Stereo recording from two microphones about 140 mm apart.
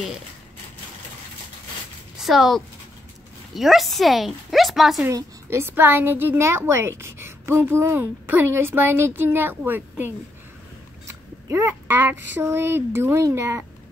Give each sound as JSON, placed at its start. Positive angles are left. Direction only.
{"t": 2.1, "sound": "a woman's voice", "side_deg": 0}
{"t": 5.0, "sound": "a woman's voice", "side_deg": -15}